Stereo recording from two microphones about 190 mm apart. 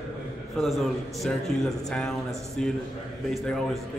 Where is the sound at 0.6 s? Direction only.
Centre (ahead or behind).